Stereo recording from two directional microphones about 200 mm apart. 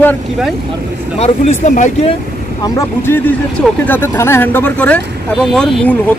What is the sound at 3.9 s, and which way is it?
Speech, 10° left (ahead or behind).